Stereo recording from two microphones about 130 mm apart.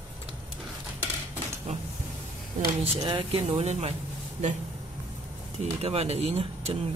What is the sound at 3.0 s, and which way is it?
Speech, 40° right (ahead or behind).